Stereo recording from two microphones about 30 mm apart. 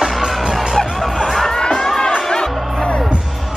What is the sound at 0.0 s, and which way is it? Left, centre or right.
Music, centre.